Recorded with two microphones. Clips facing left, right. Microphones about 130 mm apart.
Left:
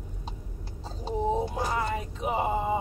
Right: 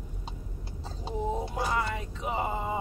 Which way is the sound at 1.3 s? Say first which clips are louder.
Left 2 dB; 25° left (ahead or behind).